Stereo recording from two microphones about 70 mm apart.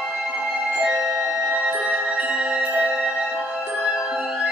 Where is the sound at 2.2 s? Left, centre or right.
Centre.